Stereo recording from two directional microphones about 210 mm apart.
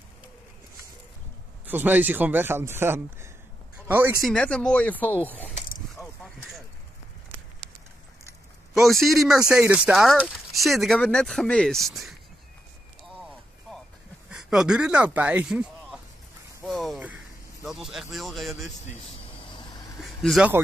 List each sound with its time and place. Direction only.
1.7 s speech: 10° right (ahead or behind)
4.2 s speech: 5° left (ahead or behind)
5.4 s a sound: 30° left (ahead or behind)
8.7 s speech: centre (ahead or behind)
14.3 s speech: 5° right (ahead or behind)
16.6 s a sound: centre (ahead or behind)
20.0 s speech: centre (ahead or behind)